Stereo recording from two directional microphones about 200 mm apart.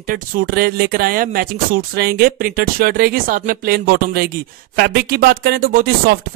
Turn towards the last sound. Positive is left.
turn(degrees=-45)  # may be behind; listen again after turning